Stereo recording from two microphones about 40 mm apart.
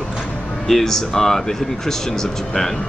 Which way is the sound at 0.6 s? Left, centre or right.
Centre.